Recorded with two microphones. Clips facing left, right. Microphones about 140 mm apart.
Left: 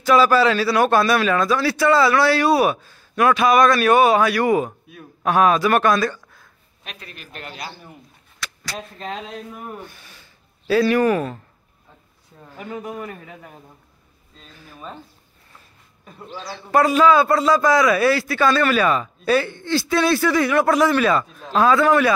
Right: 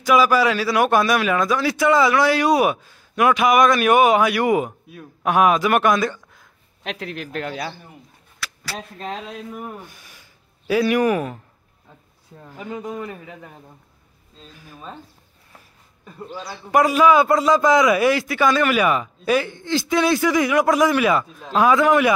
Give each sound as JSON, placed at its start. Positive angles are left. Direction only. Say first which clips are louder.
{"t": 0.0, "sound": "a man's voice", "louder": "left 1 dB", "side_deg": -10}
{"t": 6.8, "sound": "speech", "louder": "right 11 dB", "side_deg": -90}
{"t": 8.4, "sound": "speech", "louder": "even", "side_deg": -5}
{"t": 16.3, "sound": "a man's voice", "louder": "even", "side_deg": -15}